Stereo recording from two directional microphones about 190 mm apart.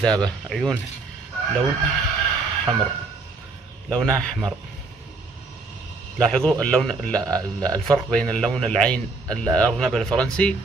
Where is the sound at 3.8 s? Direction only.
5° left (ahead or behind).